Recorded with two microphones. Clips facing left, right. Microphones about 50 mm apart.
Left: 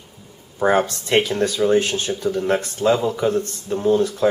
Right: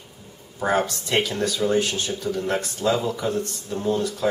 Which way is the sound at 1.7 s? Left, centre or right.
Left.